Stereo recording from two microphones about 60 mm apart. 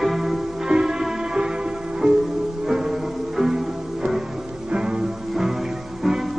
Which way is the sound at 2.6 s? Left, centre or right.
Centre.